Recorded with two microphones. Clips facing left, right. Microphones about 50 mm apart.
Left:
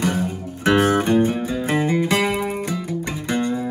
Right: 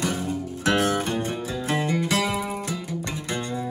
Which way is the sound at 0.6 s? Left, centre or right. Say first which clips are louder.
Left 6 dB; centre.